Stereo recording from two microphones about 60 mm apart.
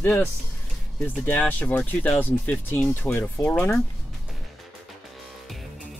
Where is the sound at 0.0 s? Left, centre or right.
Left.